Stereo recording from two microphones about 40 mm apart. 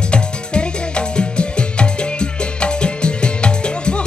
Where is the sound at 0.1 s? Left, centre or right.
Left.